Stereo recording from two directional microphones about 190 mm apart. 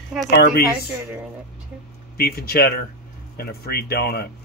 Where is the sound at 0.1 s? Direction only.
5° right (ahead or behind).